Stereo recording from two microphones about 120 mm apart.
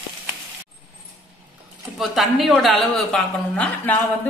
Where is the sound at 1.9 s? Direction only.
Centre (ahead or behind).